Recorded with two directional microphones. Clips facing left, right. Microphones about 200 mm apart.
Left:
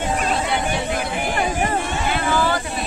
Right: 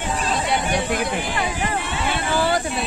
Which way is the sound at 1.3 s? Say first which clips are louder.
Left 3 dB; 50° left (ahead or behind).